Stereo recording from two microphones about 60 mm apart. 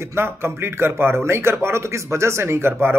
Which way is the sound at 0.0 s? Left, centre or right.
Right.